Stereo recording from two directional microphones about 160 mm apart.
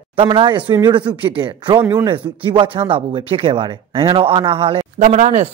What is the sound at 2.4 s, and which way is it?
Speech, 30° right (ahead or behind).